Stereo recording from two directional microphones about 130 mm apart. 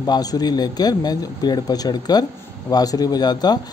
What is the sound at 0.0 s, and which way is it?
A man's voice, 30° left (ahead or behind).